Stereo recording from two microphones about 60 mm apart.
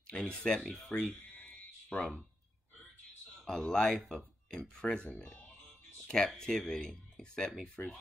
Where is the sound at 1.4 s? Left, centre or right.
Centre.